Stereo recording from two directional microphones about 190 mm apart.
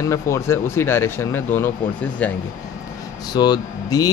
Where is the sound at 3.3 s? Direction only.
20° left (ahead or behind).